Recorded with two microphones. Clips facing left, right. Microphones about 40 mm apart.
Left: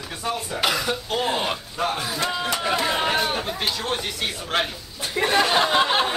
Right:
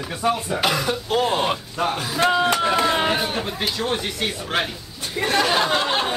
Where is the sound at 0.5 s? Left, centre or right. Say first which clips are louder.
Right 2 dB; centre.